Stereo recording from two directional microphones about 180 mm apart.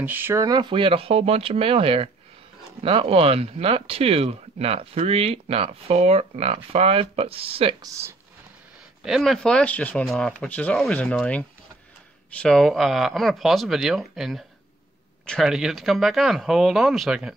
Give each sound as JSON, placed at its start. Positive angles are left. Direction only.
{"t": 0.0, "sound": "speech", "side_deg": -10}
{"t": 7.8, "sound": "speech", "side_deg": -15}
{"t": 9.0, "sound": "speech", "side_deg": 0}